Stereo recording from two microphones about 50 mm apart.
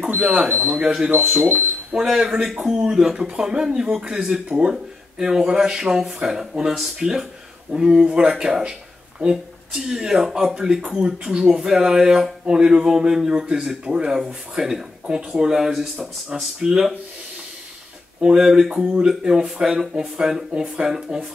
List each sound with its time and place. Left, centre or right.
0.1 s speech: right
2.0 s speech: centre
18.2 s speech: centre
19.9 s speech: right